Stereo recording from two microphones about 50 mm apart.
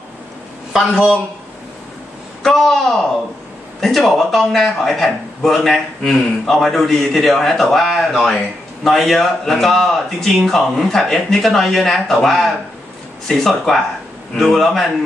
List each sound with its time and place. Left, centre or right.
2.4 s a man's voice: centre